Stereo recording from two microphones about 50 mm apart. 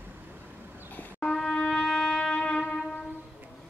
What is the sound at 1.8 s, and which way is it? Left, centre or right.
Music, centre.